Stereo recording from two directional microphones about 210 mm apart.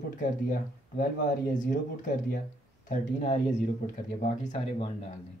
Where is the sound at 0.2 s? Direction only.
40° left (ahead or behind).